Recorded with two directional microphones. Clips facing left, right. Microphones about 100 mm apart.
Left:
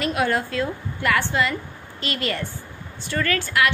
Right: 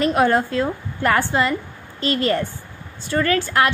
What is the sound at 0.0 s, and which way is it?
A woman's voice, 35° right (ahead or behind).